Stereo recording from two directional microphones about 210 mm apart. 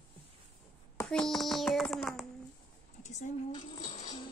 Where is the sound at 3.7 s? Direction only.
25° left (ahead or behind).